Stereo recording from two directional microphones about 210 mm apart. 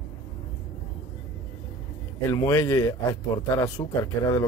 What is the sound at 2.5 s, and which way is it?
Speech, 10° left (ahead or behind).